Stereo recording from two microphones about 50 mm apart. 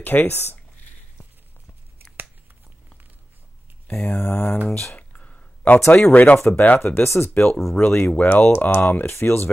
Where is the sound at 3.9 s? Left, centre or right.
Left.